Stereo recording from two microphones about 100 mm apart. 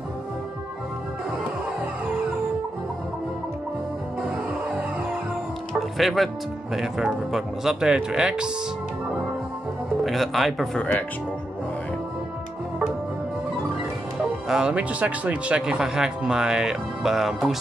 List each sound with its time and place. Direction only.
2.0 s music: 10° right (ahead or behind)
4.2 s music: 10° right (ahead or behind)
5.7 s speech: centre (ahead or behind)
10.0 s speech: centre (ahead or behind)
10.8 s speech: 15° left (ahead or behind)
14.2 s speech: 5° right (ahead or behind)